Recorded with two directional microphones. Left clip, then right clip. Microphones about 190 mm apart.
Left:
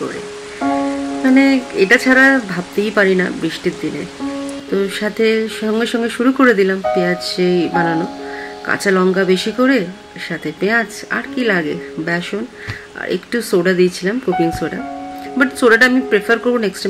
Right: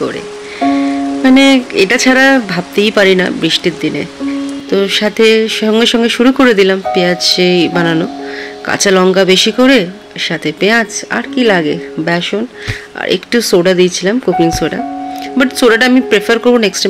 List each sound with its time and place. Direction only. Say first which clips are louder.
1.2 s speech: right 5 dB; 25° right (ahead or behind)